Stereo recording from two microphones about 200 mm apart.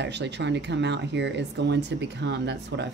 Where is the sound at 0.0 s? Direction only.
60° right (ahead or behind).